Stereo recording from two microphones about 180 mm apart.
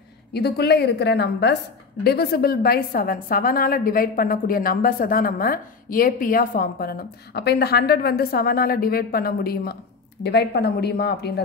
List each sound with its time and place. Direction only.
0.3 s a woman's voice: 65° left (ahead or behind)